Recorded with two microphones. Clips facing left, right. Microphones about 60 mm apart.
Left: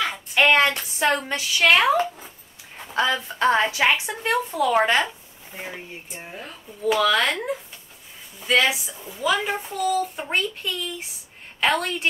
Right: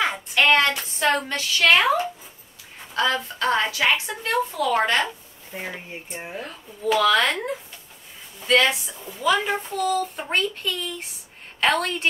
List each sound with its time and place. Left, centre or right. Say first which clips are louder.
0.3 s a sound: left 1 dB; centre
1.3 s a woman's voice: left 1 dB; centre
6.1 s speech: right 5 dB; centre
6.4 s speech: left 3 dB; centre
8.4 s speech: right 1 dB; centre